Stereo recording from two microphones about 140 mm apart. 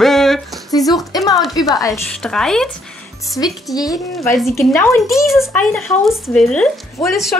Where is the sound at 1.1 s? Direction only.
25° left (ahead or behind).